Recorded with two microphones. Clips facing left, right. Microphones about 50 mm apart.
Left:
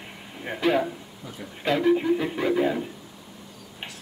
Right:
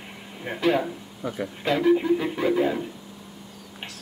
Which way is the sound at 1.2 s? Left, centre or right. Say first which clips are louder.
Right 11 dB; right.